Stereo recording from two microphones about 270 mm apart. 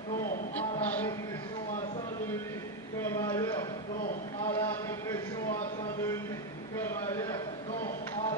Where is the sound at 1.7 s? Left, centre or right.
Left.